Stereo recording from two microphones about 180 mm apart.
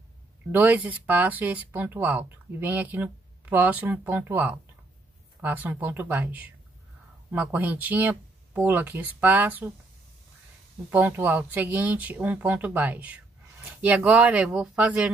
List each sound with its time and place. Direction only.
0.5 s speech: 10° right (ahead or behind)
10.9 s speech: 10° right (ahead or behind)